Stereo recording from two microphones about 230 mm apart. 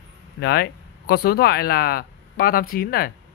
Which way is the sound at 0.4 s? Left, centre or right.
Left.